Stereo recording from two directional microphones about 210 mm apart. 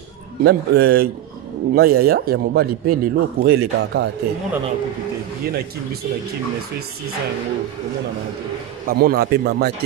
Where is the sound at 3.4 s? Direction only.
55° right (ahead or behind).